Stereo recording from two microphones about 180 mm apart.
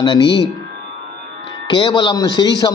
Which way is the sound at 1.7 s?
25° left (ahead or behind).